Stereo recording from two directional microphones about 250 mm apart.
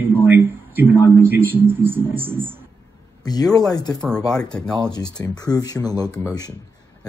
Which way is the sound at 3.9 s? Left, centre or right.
Centre.